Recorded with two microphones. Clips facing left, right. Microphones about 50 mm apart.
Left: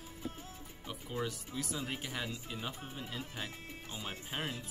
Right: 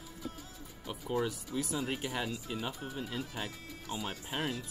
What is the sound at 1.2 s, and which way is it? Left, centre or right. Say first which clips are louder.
Speech: right 4 dB; centre.